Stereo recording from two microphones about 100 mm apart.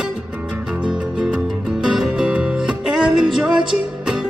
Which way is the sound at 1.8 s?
5° right (ahead or behind).